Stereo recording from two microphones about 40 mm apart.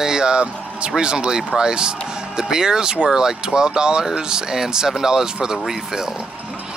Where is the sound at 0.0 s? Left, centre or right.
Centre.